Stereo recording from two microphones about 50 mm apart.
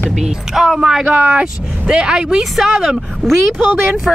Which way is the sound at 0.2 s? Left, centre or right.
Centre.